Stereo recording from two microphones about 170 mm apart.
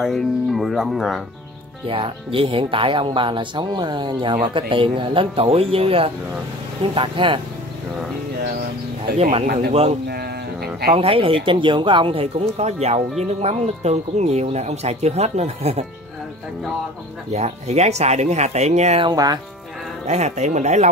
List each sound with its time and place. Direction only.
0.0 s speech: centre (ahead or behind)
1.9 s speech: 30° right (ahead or behind)
9.7 s speech: 40° right (ahead or behind)
10.0 s speech: 65° right (ahead or behind)
10.9 s speech: 35° right (ahead or behind)
17.3 s speech: 40° right (ahead or behind)
19.0 s speech: 25° right (ahead or behind)
20.1 s speech: 40° right (ahead or behind)